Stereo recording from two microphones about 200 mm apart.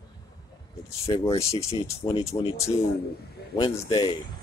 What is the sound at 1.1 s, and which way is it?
Speech, 20° left (ahead or behind).